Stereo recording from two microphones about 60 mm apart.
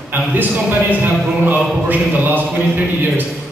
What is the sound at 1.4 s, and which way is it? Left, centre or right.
Speech, right.